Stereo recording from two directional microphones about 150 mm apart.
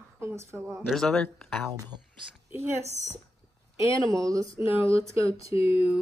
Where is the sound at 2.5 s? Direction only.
15° right (ahead or behind).